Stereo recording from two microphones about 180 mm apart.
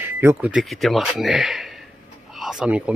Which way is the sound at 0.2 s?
10° right (ahead or behind).